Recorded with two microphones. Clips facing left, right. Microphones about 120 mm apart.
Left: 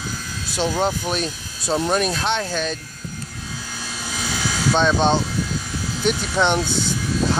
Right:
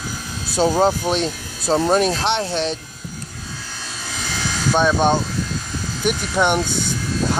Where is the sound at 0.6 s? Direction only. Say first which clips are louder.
Right 5 dB; 35° right (ahead or behind).